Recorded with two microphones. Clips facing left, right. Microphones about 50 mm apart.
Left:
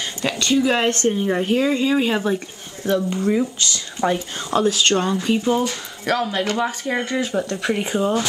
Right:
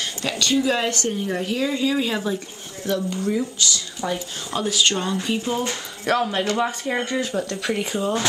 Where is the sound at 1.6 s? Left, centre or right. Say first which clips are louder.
Left 4 dB; left.